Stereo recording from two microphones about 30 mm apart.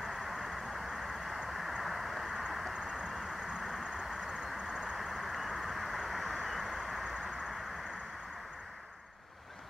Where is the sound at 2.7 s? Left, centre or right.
Right.